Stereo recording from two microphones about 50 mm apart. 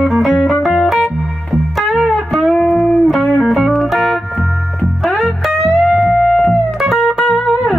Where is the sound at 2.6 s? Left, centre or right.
Centre.